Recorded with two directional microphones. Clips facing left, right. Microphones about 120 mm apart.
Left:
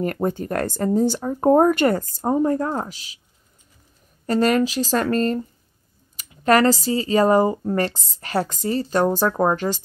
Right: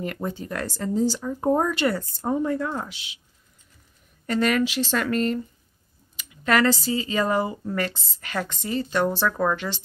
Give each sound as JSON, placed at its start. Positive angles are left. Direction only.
{"t": 0.0, "sound": "speech", "side_deg": 45}
{"t": 4.3, "sound": "speech", "side_deg": 35}